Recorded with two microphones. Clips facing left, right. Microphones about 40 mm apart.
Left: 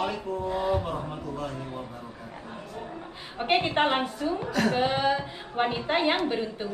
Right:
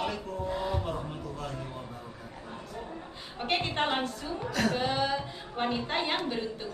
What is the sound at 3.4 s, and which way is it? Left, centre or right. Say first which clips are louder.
A woman's voice: left 6 dB; centre.